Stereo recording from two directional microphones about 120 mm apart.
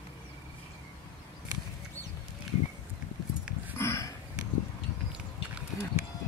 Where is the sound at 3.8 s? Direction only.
25° left (ahead or behind).